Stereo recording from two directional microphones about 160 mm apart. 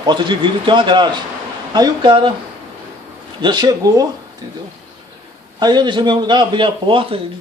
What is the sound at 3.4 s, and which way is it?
Speech, 25° right (ahead or behind).